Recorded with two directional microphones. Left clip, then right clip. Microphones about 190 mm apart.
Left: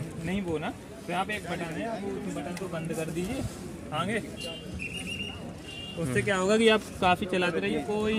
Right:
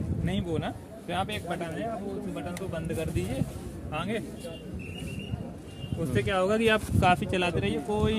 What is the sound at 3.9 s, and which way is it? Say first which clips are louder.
Speech: left 2 dB; 45° left (ahead or behind).